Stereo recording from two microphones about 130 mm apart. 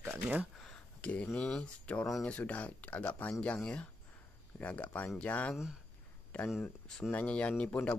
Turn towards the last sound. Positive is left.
turn(degrees=10)  # may be behind; listen again after turning